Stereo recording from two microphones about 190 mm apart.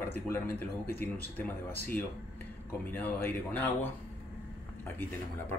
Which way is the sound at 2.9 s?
10° left (ahead or behind).